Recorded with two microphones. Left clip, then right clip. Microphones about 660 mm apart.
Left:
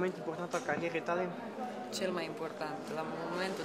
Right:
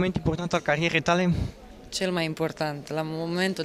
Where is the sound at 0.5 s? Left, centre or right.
Right.